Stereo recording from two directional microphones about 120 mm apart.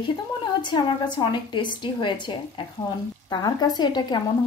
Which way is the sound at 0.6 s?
40° left (ahead or behind).